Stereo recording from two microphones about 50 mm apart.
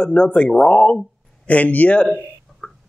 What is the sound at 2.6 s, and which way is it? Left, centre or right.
Tick-tock, left.